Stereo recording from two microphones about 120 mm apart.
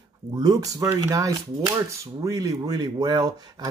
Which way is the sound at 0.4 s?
30° right (ahead or behind).